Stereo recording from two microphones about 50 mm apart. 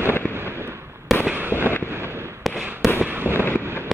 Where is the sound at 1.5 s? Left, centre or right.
Left.